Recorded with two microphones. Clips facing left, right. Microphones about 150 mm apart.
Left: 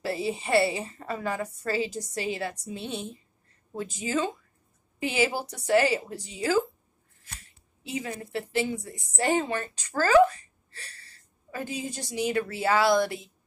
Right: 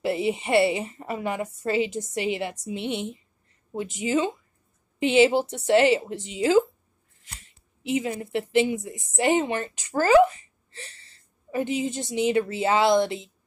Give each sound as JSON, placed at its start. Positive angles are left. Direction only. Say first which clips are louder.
{"t": 0.0, "sound": "a woman's voice", "louder": "right 5 dB", "side_deg": -20}